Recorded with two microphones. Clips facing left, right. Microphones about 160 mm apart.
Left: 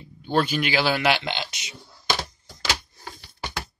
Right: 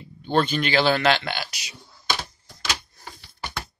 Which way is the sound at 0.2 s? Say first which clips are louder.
Right 1 dB; 10° left (ahead or behind).